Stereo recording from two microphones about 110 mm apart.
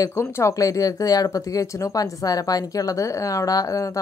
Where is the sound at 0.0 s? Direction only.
25° left (ahead or behind).